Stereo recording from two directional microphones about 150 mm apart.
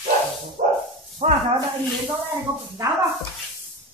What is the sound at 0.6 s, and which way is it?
Bow-wow, 55° right (ahead or behind).